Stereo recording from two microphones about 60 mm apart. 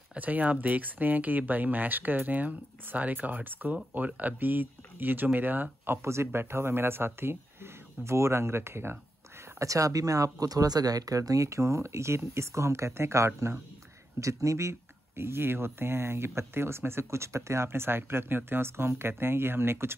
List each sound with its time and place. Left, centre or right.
0.1 s speech: right
6.0 s speech: right
9.6 s speech: right